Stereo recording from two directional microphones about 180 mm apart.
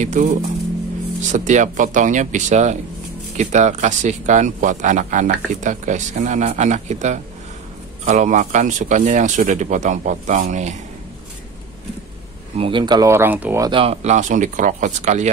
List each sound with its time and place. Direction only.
0.0 s speech: 45° right (ahead or behind)
12.5 s speech: 30° right (ahead or behind); by 13.7 s 10° right (ahead or behind)
13.7 s speech: 30° right (ahead or behind)